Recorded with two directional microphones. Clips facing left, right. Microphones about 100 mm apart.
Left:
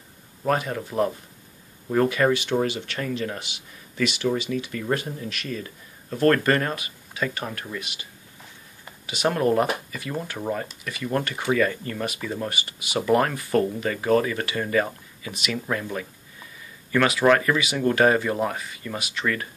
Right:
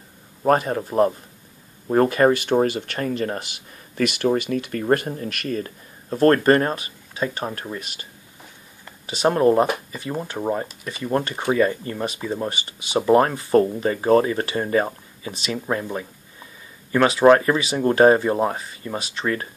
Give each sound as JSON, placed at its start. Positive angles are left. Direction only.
{"t": 0.4, "sound": "speech", "side_deg": -40}